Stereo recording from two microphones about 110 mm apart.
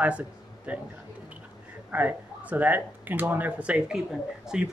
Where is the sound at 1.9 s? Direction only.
15° right (ahead or behind).